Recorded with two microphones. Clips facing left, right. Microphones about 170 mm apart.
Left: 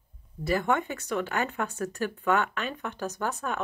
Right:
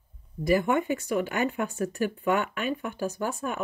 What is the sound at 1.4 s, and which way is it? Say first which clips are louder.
Speech: right 3 dB; 15° right (ahead or behind).